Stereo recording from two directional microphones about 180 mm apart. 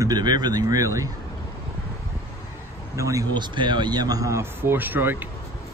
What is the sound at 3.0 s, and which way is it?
Speech, 15° right (ahead or behind).